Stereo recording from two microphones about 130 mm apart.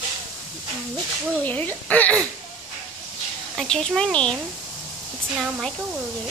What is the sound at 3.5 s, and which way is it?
Speech, 5° left (ahead or behind).